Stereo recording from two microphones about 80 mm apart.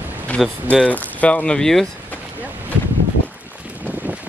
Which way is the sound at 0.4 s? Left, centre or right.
Centre.